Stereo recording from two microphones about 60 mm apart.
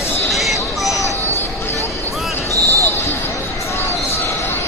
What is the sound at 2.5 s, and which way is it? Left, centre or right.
Basketball bounce, right.